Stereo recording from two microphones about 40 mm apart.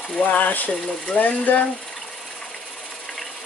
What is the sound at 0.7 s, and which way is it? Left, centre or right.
Speech, centre.